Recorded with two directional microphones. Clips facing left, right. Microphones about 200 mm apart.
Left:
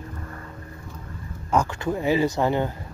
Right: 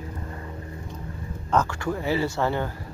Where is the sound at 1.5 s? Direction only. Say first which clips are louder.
Left 1 dB; 15° left (ahead or behind).